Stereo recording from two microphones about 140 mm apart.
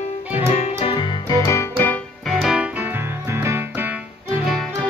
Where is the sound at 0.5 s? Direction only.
45° left (ahead or behind).